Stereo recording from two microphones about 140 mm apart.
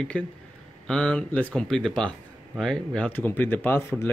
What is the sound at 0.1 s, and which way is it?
Speech, 10° left (ahead or behind).